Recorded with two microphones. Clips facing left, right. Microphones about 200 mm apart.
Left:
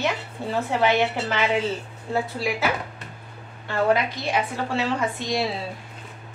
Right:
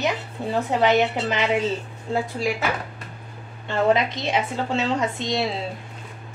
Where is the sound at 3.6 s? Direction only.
20° right (ahead or behind).